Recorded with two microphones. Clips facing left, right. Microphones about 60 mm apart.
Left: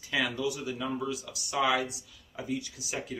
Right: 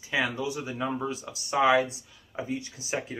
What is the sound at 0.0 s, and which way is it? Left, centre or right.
Speech, right.